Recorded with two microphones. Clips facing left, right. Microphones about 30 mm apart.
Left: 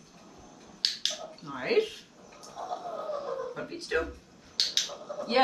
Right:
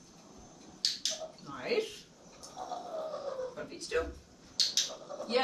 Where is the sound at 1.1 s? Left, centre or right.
Left.